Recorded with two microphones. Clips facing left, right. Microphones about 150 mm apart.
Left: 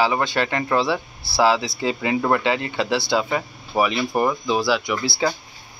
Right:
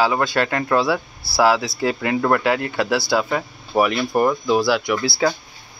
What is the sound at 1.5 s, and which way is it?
Speech, 15° left (ahead or behind).